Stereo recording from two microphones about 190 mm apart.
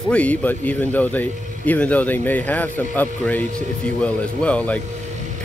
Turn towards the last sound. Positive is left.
turn(degrees=5)  # may be behind; listen again after turning